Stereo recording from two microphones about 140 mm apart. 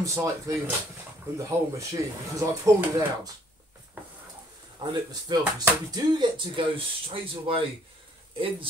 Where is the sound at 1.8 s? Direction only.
25° right (ahead or behind).